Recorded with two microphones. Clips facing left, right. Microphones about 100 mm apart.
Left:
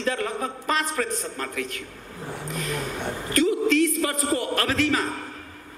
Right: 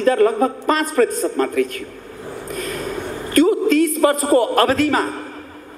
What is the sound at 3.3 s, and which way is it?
A man's voice, 45° right (ahead or behind).